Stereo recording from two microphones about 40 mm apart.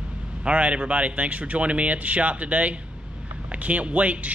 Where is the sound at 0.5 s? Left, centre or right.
Right.